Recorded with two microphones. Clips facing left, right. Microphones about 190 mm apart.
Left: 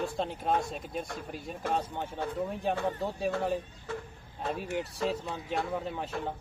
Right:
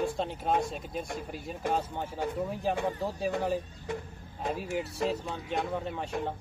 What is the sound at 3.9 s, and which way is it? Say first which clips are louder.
Speech: right 2 dB; 15° right (ahead or behind).